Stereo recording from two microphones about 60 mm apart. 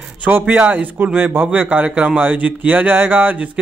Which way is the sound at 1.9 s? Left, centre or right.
Centre.